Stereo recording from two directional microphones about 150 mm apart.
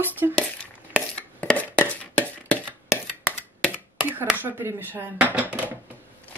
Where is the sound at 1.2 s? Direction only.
10° left (ahead or behind).